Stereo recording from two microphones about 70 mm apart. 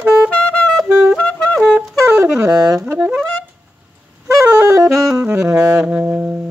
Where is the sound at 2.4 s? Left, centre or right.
Right.